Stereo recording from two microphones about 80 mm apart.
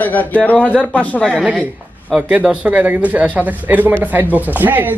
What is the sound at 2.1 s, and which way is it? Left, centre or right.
Speech, centre.